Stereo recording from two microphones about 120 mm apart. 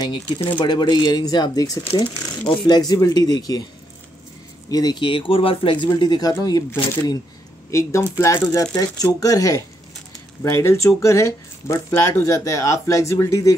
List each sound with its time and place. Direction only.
0.0 s speech: 40° left (ahead or behind)
4.6 s speech: 35° left (ahead or behind)
7.7 s speech: 25° left (ahead or behind)